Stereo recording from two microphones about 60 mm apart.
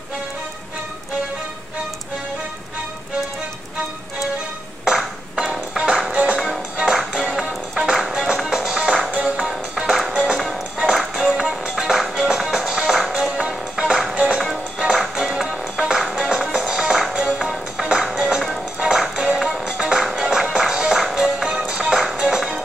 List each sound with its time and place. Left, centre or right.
4.8 s music: centre
9.5 s music: centre